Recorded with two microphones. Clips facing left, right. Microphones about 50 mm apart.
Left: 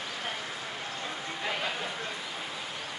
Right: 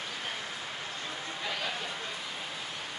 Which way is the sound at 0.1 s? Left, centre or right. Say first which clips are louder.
Left 2 dB; left.